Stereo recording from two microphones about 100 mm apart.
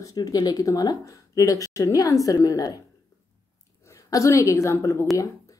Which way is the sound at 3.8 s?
35° left (ahead or behind).